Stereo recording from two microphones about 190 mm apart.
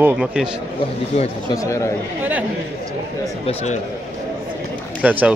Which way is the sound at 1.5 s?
15° left (ahead or behind).